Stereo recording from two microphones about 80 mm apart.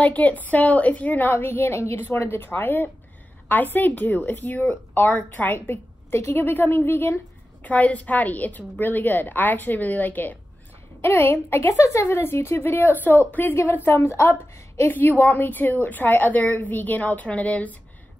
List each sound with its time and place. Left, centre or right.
0.0 s a woman's voice: centre